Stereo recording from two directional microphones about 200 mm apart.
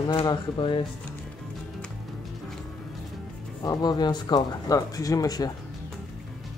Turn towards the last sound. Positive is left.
turn(degrees=20)  # may be behind; listen again after turning